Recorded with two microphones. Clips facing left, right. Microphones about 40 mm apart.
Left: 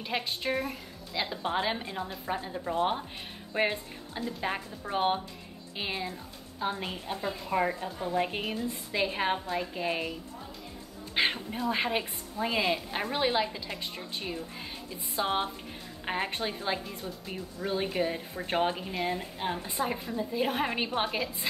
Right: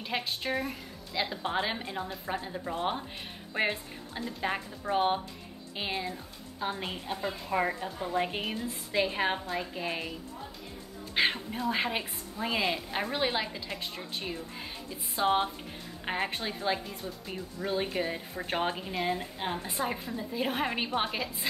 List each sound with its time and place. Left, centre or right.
0.0 s speech: centre
11.1 s speech: centre
16.3 s a woman's voice: centre